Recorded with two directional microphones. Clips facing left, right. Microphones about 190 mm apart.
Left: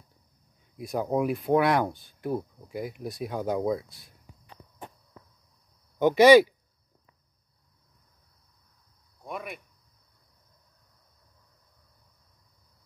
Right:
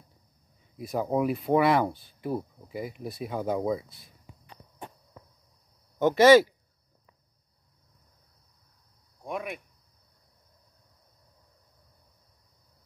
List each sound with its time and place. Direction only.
0.7 s speech: centre (ahead or behind)
5.9 s speech: 15° left (ahead or behind)
9.2 s speech: centre (ahead or behind)